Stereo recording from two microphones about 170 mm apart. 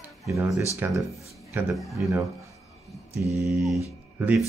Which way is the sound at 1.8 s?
Centre (ahead or behind).